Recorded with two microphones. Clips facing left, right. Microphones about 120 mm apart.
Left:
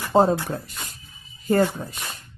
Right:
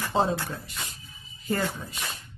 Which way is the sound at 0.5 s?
45° left (ahead or behind).